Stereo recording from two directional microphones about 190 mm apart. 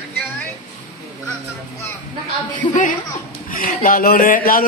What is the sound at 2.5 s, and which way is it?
A woman's voice, 40° left (ahead or behind).